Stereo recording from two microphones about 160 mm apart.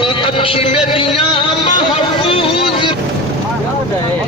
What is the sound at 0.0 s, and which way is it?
Music, 35° left (ahead or behind).